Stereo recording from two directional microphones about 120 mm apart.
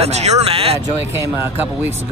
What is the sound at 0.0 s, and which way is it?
Speech, 65° right (ahead or behind).